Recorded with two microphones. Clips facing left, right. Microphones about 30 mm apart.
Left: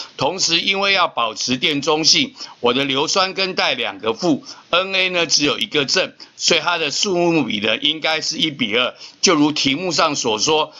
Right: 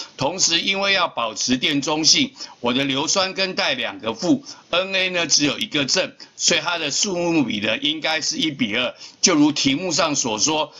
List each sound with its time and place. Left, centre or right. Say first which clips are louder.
0.2 s a man's voice: left 2 dB; centre